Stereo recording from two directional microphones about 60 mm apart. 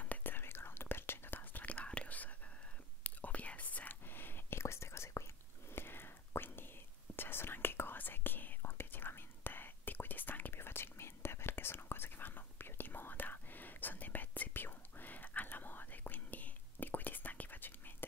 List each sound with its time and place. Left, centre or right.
0.0 s whispering: left